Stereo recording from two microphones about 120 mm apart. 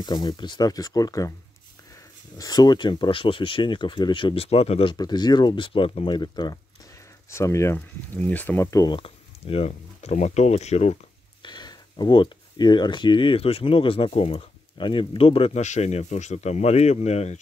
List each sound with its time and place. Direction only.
0.0 s speech: 35° left (ahead or behind)
2.3 s speech: 35° left (ahead or behind); by 4.9 s 55° left (ahead or behind)
4.9 s speech: 35° left (ahead or behind); by 6.1 s 50° left (ahead or behind)
6.1 s speech: 35° left (ahead or behind)
7.2 s speech: 25° left (ahead or behind)
8.8 s speech: 45° left (ahead or behind); by 11.0 s 65° left (ahead or behind)
11.4 s speech: 35° left (ahead or behind); by 15.6 s 50° left (ahead or behind)
15.6 s speech: 70° left (ahead or behind)